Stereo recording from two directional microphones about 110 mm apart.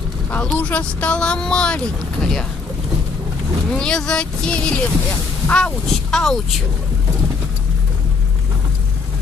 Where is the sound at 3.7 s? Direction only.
5° left (ahead or behind).